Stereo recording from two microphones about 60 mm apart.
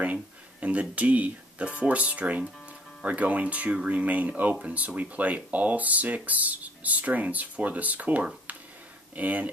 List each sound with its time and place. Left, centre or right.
0.0 s speech: right